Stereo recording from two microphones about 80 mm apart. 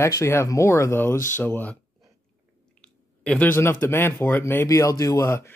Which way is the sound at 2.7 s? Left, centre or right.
Centre.